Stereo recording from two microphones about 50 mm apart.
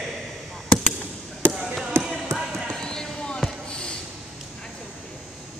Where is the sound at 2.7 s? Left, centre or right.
Centre.